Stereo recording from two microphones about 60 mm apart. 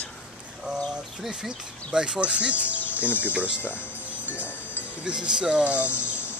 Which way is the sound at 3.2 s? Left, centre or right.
Right.